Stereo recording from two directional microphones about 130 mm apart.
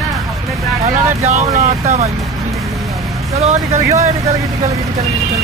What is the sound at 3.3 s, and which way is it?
Speech, 55° right (ahead or behind).